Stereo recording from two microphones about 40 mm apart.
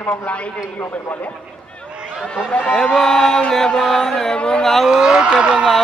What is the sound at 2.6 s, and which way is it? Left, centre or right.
Speech, left.